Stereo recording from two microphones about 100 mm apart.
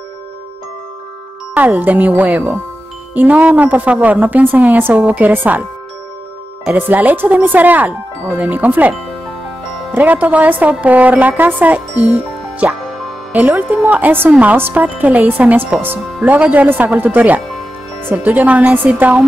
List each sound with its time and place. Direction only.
1.5 s a woman's voice: 15° right (ahead or behind)
6.7 s a woman's voice: 15° right (ahead or behind)
9.9 s a woman's voice: 15° right (ahead or behind)